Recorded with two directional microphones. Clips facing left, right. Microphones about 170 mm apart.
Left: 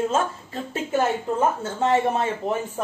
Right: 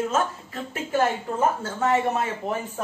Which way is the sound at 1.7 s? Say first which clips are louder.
Left 3 dB; 25° left (ahead or behind).